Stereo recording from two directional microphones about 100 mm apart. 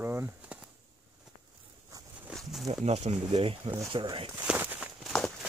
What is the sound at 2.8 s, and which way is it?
Speech, 90° right.